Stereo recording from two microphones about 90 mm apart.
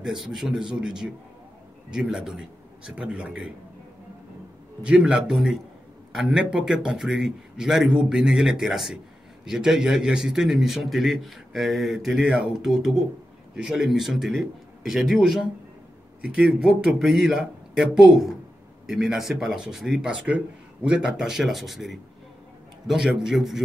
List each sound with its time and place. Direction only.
0.0 s a man's voice: 5° right (ahead or behind)
4.8 s a man's voice: 5° right (ahead or behind)